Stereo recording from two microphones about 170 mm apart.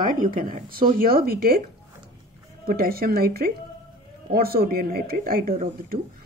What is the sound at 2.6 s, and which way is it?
Speech, 65° right (ahead or behind).